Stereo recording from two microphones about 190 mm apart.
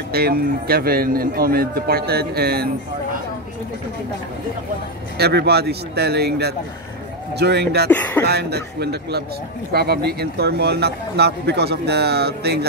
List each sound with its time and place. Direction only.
0.1 s speech: 55° right (ahead or behind)
5.1 s speech: 60° right (ahead or behind)
7.9 s speech: 10° left (ahead or behind)
8.3 s speech: 60° right (ahead or behind)